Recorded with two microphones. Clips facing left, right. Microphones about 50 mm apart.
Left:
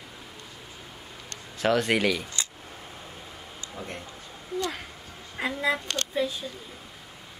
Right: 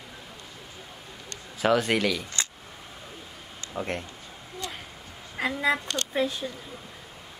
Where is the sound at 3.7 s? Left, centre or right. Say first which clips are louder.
Right 7 dB; right.